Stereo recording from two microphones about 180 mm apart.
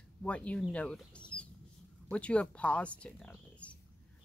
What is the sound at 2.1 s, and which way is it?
Speech, 5° left (ahead or behind).